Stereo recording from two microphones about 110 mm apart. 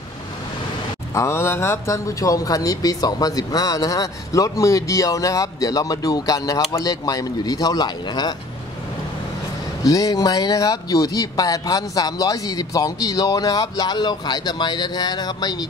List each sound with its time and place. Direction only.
1.1 s speech: 25° left (ahead or behind)
9.8 s speech: 30° left (ahead or behind)